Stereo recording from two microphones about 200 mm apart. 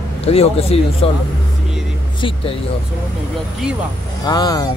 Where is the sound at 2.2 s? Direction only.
25° left (ahead or behind).